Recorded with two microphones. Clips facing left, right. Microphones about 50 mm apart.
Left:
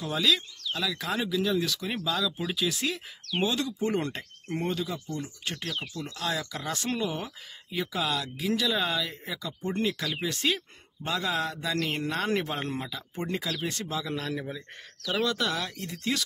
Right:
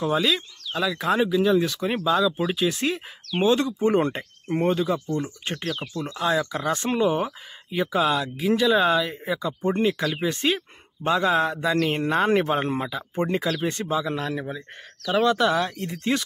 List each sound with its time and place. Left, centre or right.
0.0 s speech: right
6.1 s speech: right
9.8 s speech: right